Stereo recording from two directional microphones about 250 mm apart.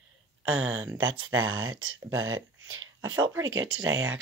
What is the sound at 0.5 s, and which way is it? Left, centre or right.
Speech, right.